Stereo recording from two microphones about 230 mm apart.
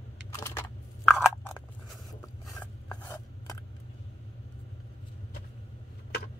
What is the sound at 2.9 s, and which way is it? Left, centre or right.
Filing, centre.